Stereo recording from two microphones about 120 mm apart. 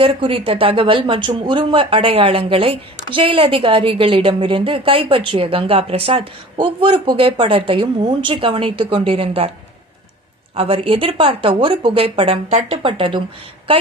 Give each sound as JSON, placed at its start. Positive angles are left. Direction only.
{"t": 0.0, "sound": "speech", "side_deg": -50}
{"t": 10.5, "sound": "a woman's voice", "side_deg": -50}